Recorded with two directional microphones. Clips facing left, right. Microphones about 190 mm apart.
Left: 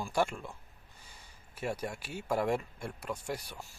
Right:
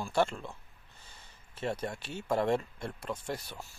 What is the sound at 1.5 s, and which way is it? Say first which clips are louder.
Speech: right 1 dB; 10° left (ahead or behind).